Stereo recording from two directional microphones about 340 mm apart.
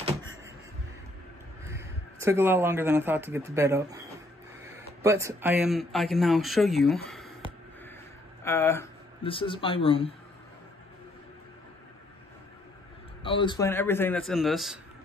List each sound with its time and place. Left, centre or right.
1.7 s speech: centre
5.0 s speech: centre
7.1 s a sound: centre
8.5 s speech: centre
13.2 s a man's voice: centre